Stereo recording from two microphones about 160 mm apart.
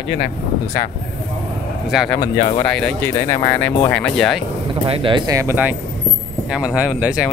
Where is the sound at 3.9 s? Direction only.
5° left (ahead or behind).